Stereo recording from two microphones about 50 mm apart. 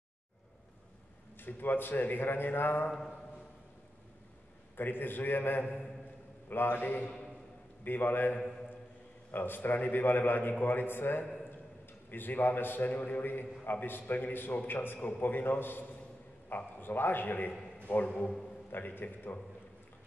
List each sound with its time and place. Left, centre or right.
1.4 s a man's voice: left
4.7 s a man's voice: left
15.0 s a man's voice: left
18.0 s a man's voice: left
18.7 s a man's voice: left